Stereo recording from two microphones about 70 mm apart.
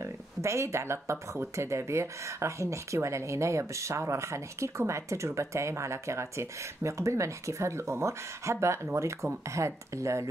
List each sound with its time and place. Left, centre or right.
0.0 s speech: right